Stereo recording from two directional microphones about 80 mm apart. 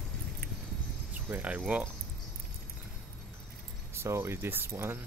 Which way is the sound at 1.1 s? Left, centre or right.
Right.